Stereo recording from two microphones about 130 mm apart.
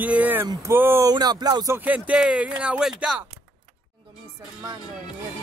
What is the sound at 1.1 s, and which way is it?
Speech, 30° right (ahead or behind).